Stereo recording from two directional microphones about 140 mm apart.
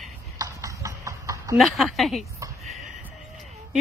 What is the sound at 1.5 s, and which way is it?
Speech, centre (ahead or behind).